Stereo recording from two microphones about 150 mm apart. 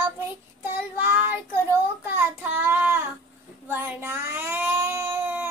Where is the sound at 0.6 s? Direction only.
15° right (ahead or behind).